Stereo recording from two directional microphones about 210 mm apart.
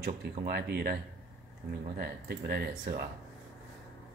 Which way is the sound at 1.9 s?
50° right (ahead or behind).